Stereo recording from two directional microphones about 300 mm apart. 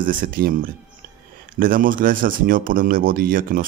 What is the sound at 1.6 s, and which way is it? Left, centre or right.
Speech, right.